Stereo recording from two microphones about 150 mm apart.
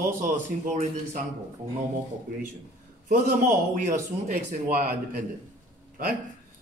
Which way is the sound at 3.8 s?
65° right (ahead or behind).